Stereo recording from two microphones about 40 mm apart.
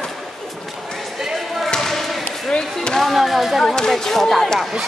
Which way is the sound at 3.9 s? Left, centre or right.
Centre.